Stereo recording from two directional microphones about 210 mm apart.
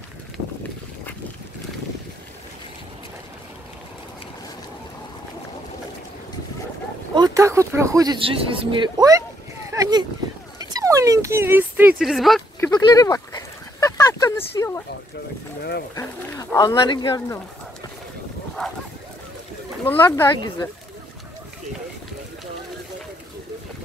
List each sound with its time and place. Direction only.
7.2 s speech: 15° right (ahead or behind)
9.7 s a sound: 20° right (ahead or behind)
10.6 s speech: 15° right (ahead or behind); by 12.4 s centre (ahead or behind)
12.5 s a sound: 15° left (ahead or behind)
15.9 s speech: 15° left (ahead or behind)
19.8 s speech: 10° left (ahead or behind)